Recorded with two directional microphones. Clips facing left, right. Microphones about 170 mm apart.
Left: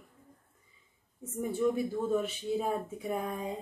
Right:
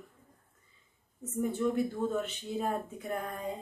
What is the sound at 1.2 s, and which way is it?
Speech, 10° left (ahead or behind).